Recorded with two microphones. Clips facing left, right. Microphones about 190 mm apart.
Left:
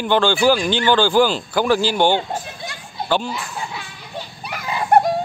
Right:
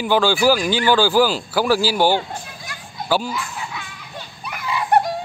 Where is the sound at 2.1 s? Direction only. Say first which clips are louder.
Left 1 dB; 25° left (ahead or behind).